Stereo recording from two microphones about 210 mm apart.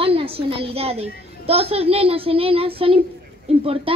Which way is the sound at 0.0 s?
25° right (ahead or behind).